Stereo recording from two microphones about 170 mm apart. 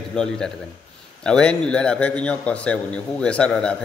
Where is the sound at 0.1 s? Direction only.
5° left (ahead or behind).